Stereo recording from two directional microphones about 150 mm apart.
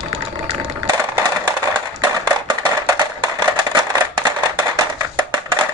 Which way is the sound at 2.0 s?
30° right (ahead or behind).